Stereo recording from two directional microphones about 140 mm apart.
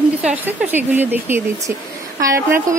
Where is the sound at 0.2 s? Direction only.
5° right (ahead or behind).